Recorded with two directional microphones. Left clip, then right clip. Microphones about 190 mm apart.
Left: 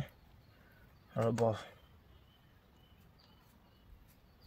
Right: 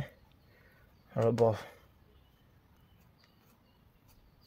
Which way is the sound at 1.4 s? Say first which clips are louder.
Right 5 dB; 40° right (ahead or behind).